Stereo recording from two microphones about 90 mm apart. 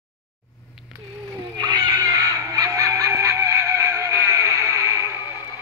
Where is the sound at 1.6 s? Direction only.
45° right (ahead or behind).